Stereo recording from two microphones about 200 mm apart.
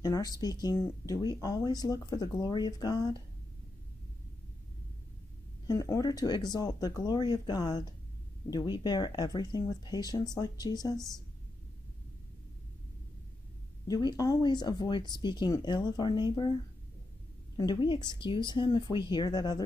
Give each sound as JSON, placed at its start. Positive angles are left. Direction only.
{"t": 0.0, "sound": "speech", "side_deg": 20}
{"t": 5.7, "sound": "speech", "side_deg": 15}
{"t": 13.8, "sound": "speech", "side_deg": 20}
{"t": 17.6, "sound": "speech", "side_deg": 20}